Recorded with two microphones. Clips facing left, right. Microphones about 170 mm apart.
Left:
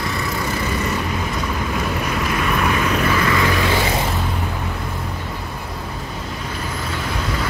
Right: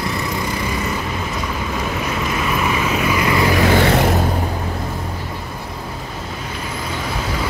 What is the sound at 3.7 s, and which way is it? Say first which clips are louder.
Vehicle: right 6 dB; 65° right (ahead or behind).